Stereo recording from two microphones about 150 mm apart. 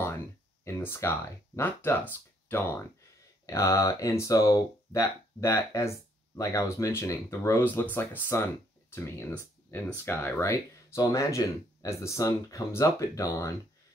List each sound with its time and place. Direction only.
0.7 s speech: 15° left (ahead or behind)